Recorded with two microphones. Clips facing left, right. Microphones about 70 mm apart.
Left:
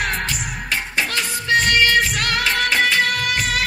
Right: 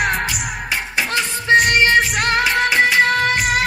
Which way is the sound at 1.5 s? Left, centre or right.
Right.